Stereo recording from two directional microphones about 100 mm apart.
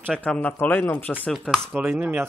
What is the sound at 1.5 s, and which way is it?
Speech, 5° left (ahead or behind).